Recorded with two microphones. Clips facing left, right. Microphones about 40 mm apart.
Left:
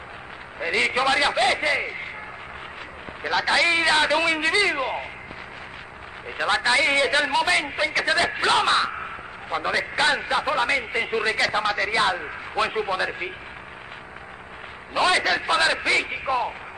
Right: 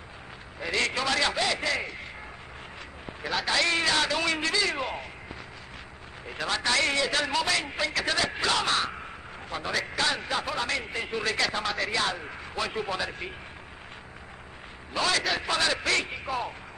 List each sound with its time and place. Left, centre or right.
0.6 s a man's voice: left
3.4 s a man's voice: left
6.2 s a man's voice: left
15.0 s a sound: left
15.4 s a man's voice: left